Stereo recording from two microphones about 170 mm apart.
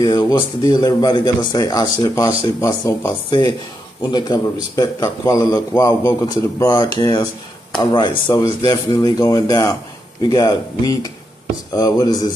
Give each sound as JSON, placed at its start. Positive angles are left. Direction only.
{"t": 0.0, "sound": "speech", "side_deg": 25}